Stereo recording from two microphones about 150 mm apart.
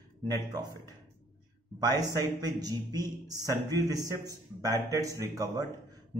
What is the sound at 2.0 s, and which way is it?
A man's voice, 25° right (ahead or behind).